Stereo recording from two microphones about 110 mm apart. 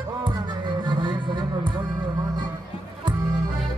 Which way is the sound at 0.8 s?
45° right (ahead or behind).